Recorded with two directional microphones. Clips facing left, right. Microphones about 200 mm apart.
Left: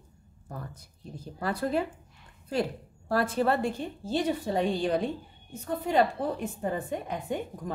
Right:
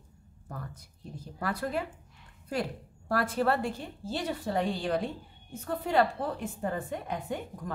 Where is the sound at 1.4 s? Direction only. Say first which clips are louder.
Left 4 dB; 25° left (ahead or behind).